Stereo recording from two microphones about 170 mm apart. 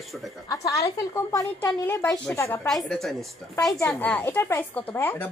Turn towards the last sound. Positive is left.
turn(degrees=15)  # may be behind; listen again after turning